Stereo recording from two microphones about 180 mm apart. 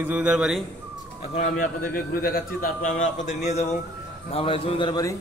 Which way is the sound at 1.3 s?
45° left (ahead or behind).